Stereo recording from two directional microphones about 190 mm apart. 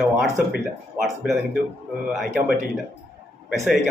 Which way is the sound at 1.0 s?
Centre (ahead or behind).